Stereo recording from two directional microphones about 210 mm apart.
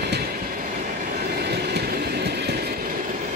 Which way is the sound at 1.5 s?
50° right (ahead or behind).